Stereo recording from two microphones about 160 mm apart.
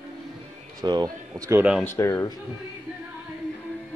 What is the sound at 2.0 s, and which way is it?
Speech, 20° left (ahead or behind).